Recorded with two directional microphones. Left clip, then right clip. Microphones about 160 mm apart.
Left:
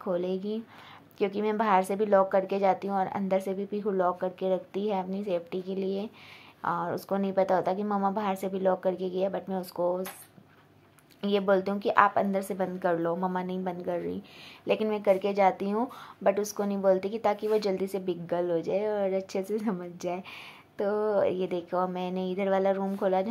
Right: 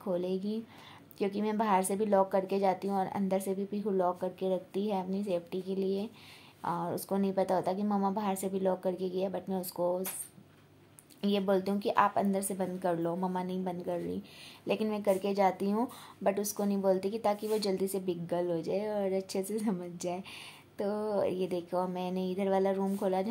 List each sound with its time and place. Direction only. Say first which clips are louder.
0.0 s speech: left 3 dB; 10° left (ahead or behind)
11.1 s speech: left 5 dB; 10° left (ahead or behind)